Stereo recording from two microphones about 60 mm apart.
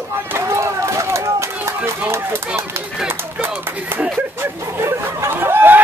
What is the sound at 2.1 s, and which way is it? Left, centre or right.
Speech, right.